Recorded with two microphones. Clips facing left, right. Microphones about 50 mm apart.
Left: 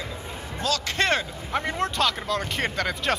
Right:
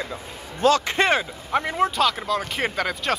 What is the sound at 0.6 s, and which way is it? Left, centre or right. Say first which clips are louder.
Speech: right 9 dB; right.